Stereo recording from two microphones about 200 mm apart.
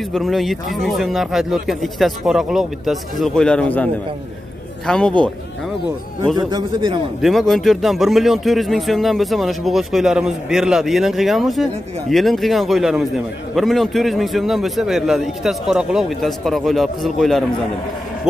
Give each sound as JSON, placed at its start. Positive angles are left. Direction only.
{"t": 0.1, "sound": "a man's voice", "side_deg": 0}
{"t": 6.3, "sound": "a man's voice", "side_deg": -20}
{"t": 7.2, "sound": "a man's voice", "side_deg": 0}